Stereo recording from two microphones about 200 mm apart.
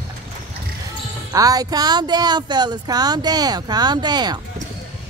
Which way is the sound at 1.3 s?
20° right (ahead or behind).